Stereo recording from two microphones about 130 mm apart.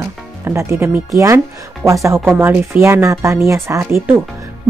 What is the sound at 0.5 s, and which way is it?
Speech, 20° right (ahead or behind).